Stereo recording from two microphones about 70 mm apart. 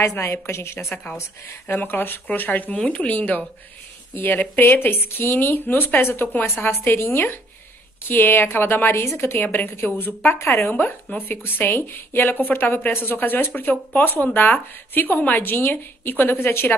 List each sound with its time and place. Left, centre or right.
0.0 s a woman's voice: left
9.4 s a woman's voice: left
10.8 s speech: left